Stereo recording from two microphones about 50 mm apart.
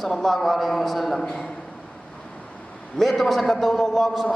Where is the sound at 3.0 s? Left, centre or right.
Centre.